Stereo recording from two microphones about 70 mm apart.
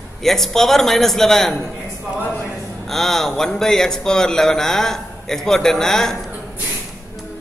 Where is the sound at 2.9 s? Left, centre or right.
Centre.